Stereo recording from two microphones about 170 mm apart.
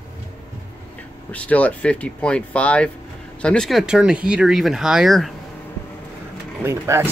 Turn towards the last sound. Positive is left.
turn(degrees=-15)  # may be behind; listen again after turning